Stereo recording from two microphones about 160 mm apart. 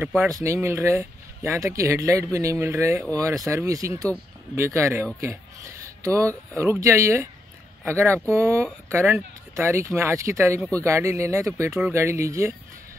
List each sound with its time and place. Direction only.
0.0 s speech: 10° right (ahead or behind)
0.3 s speech: 20° right (ahead or behind)
6.0 s speech: 20° right (ahead or behind)